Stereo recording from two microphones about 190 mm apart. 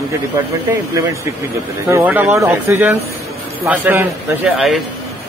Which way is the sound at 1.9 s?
10° right (ahead or behind).